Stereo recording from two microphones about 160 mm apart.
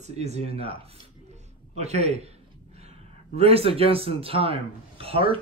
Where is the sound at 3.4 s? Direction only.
40° right (ahead or behind).